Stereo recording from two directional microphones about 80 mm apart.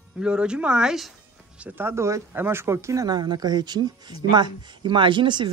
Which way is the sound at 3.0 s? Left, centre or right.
Right.